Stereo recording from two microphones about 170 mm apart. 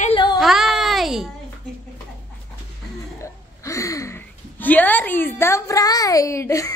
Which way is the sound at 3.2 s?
20° left (ahead or behind).